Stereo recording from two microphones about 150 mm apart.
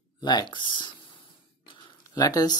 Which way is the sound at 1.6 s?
30° left (ahead or behind).